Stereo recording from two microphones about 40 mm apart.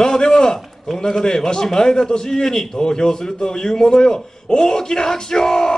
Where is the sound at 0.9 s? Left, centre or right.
Centre.